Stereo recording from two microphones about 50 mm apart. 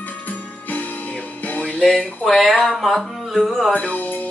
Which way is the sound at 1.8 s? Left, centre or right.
Centre.